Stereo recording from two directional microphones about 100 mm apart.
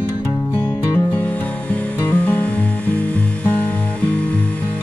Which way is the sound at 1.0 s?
20° left (ahead or behind).